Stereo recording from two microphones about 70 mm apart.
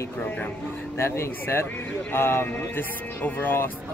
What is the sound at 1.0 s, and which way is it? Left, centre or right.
Speech, left.